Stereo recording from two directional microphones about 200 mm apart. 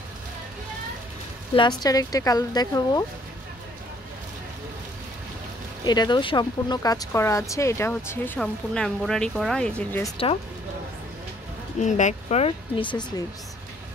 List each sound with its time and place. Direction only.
1.5 s speech: 20° left (ahead or behind)
5.9 s speech: 20° left (ahead or behind); by 10.0 s 5° left (ahead or behind)
10.0 s speech: 25° left (ahead or behind)
11.8 s speech: 35° left (ahead or behind)